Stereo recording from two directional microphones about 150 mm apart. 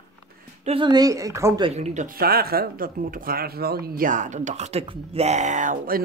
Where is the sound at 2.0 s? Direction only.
90° right; by 6.0 s 65° right (ahead or behind).